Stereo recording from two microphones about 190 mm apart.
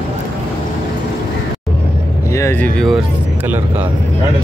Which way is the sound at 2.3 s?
10° left (ahead or behind).